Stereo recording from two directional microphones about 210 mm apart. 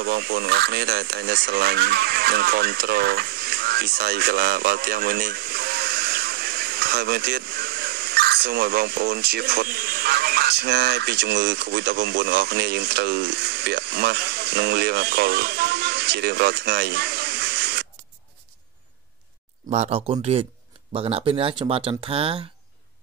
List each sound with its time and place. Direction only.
0.0 s speech: 50° right (ahead or behind)
19.7 s speech: 30° right (ahead or behind)